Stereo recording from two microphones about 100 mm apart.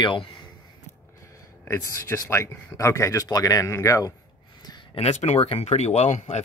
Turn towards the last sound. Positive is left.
turn(degrees=90)